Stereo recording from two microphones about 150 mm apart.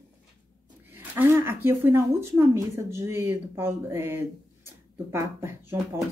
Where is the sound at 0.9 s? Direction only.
15° right (ahead or behind).